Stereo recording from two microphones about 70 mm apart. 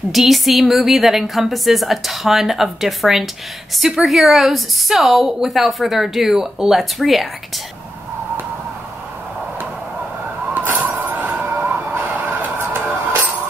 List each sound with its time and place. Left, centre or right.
0.1 s a woman's voice: centre
10.5 s emergency vehicle: right
10.9 s vehicle: right
12.9 s music: right